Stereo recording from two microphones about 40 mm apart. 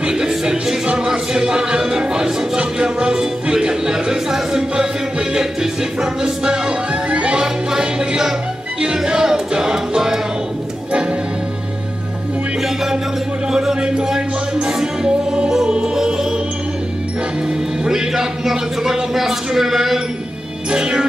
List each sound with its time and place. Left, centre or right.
0.1 s music: centre
6.9 s music: right; by 10.2 s centre
10.9 s music: right
13.5 s music: centre
17.8 s a sound: centre
20.7 s music: right